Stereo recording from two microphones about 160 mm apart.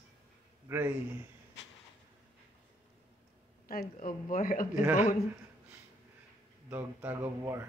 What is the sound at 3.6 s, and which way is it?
Speech, 65° left (ahead or behind).